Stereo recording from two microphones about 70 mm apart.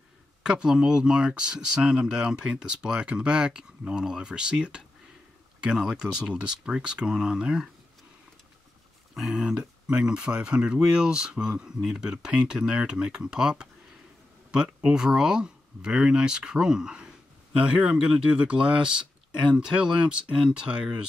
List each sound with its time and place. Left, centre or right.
0.4 s speech: centre
9.1 s speech: centre